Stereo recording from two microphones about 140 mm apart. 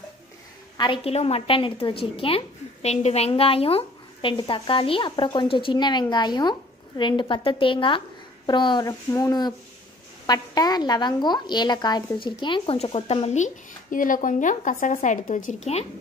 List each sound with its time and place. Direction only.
0.7 s a woman's voice: 35° left (ahead or behind); by 15.8 s 55° left (ahead or behind)